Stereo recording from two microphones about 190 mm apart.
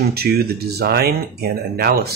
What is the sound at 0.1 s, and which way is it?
Speech, 55° right (ahead or behind).